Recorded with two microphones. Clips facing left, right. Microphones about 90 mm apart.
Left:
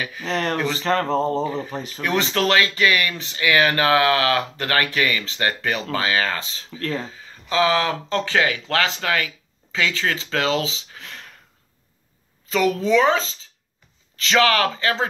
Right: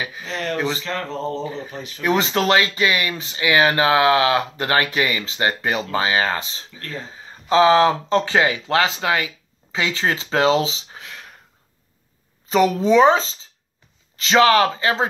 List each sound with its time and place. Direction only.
0.2 s a sound: 45° left (ahead or behind)
2.0 s speech: 20° right (ahead or behind)
12.4 s speech: 25° right (ahead or behind)